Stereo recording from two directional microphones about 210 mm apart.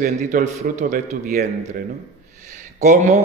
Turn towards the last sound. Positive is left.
turn(degrees=-35)  # may be behind; listen again after turning